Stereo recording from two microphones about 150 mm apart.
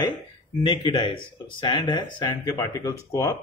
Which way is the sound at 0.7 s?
35° left (ahead or behind).